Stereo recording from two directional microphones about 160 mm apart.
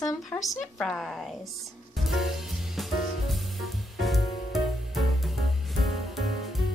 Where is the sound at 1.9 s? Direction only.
Centre (ahead or behind).